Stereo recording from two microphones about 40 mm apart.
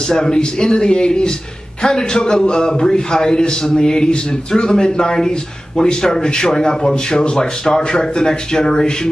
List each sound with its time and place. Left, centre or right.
0.1 s a man's voice: centre